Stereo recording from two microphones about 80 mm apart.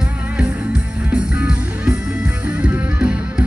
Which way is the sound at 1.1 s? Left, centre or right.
Centre.